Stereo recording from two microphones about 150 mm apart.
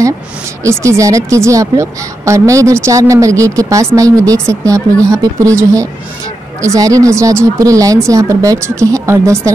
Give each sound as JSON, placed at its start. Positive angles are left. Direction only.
{"t": 0.7, "sound": "speech", "side_deg": -20}